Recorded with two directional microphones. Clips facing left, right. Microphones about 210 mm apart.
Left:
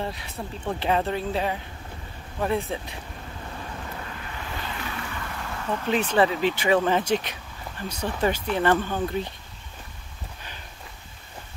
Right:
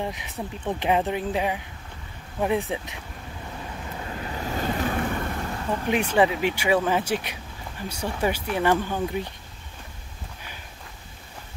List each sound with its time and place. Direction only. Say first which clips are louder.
0.0 s speech: right 1 dB; 15° right (ahead or behind)
4.1 s waves: right 6 dB; 30° right (ahead or behind)
5.9 s speech: even; 15° right (ahead or behind)